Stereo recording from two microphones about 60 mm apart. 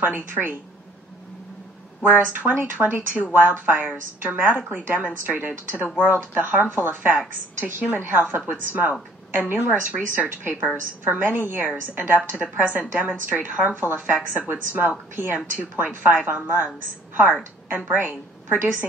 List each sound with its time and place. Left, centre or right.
0.0 s a woman's voice: right
2.0 s a woman's voice: right